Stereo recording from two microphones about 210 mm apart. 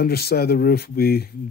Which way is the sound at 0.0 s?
50° left (ahead or behind).